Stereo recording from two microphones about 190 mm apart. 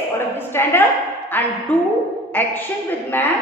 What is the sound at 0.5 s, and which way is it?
A woman's voice, 15° left (ahead or behind).